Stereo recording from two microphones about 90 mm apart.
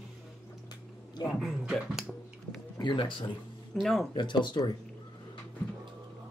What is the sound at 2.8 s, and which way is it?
Speech, 60° left (ahead or behind).